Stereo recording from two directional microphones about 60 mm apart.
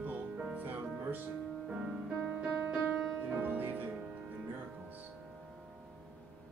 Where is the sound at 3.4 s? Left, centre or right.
Right.